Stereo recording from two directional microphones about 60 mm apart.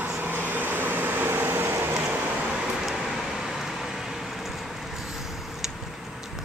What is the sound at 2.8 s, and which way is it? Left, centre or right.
Vehicle, centre.